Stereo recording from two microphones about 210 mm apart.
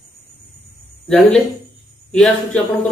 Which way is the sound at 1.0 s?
5° left (ahead or behind).